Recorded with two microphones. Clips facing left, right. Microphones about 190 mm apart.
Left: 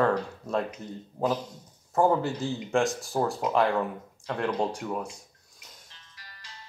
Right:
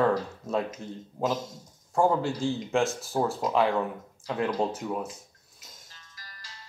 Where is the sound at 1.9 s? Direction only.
Centre (ahead or behind).